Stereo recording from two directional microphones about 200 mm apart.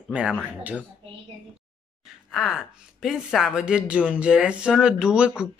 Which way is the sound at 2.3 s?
Centre (ahead or behind).